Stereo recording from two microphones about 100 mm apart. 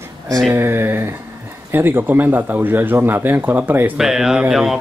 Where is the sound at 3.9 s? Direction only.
5° right (ahead or behind).